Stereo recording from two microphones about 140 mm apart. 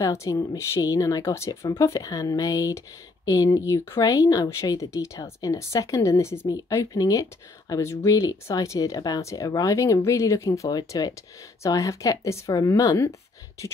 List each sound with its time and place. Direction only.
0.0 s speech: 20° left (ahead or behind)